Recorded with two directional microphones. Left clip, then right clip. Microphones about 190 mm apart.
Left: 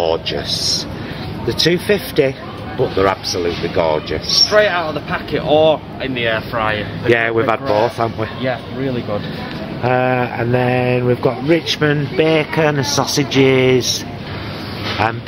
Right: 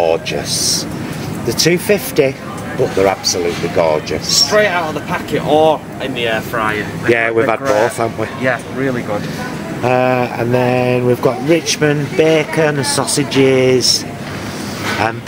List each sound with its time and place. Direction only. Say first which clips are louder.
0.0 s a sound: right 3 dB; 5° left (ahead or behind)
0.5 s speech: right 1 dB; 90° right
1.5 s speech: right 2 dB; centre (ahead or behind)
4.3 s speech: even; 35° left (ahead or behind); by 6.8 s 55° left (ahead or behind)
7.1 s speech: right 1 dB; centre (ahead or behind)
9.8 s speech: right 2 dB; centre (ahead or behind)